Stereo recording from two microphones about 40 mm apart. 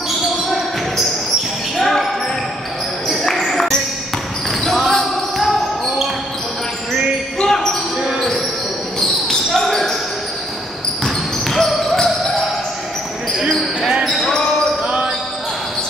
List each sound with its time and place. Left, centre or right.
0.5 s basketball bounce: centre
3.3 s music: centre
4.5 s basketball bounce: centre
7.3 s basketball bounce: centre
9.0 s basketball bounce: centre
11.4 s basketball bounce: centre
14.0 s basketball bounce: centre
14.3 s basketball bounce: left
14.8 s basketball bounce: right